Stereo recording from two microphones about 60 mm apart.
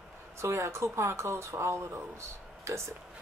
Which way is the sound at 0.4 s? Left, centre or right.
Right.